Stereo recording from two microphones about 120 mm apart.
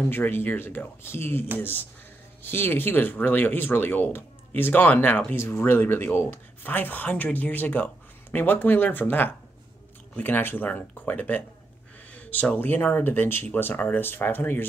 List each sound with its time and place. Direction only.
0.1 s speech: 20° left (ahead or behind)